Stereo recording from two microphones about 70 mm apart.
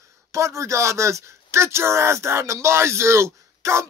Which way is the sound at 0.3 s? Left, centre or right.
Right.